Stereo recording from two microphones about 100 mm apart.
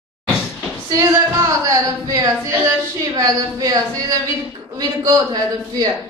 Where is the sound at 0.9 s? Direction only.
35° right (ahead or behind).